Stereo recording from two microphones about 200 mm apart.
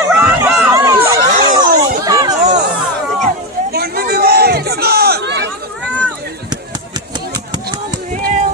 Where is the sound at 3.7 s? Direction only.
50° right (ahead or behind).